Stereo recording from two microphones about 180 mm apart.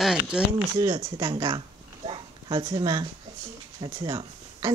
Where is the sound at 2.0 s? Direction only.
30° right (ahead or behind).